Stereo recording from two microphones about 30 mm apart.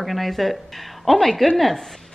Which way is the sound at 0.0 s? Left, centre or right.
Centre.